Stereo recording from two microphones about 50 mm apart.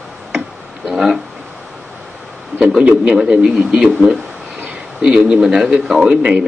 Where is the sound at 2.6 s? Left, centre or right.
Centre.